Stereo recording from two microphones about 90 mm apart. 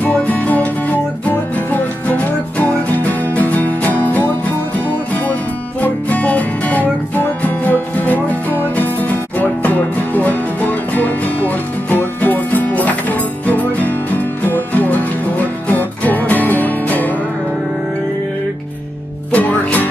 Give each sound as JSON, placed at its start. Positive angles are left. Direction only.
{"t": 0.0, "sound": "music", "side_deg": 15}
{"t": 19.3, "sound": "music", "side_deg": 20}